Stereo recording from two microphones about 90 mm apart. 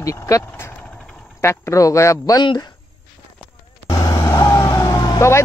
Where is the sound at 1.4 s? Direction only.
35° left (ahead or behind).